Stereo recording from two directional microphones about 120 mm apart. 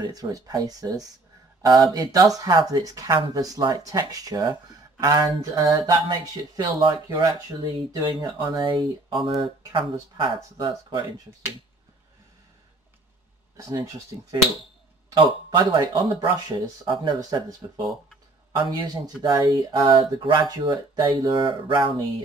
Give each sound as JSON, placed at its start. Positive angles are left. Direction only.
{"t": 0.0, "sound": "speech", "side_deg": -30}
{"t": 5.6, "sound": "music", "side_deg": -30}
{"t": 6.0, "sound": "speech", "side_deg": -40}
{"t": 13.6, "sound": "speech", "side_deg": -30}